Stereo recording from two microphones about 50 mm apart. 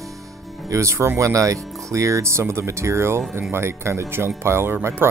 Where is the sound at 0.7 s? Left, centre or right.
Right.